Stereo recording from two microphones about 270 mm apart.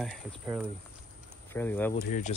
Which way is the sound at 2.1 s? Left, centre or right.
Left.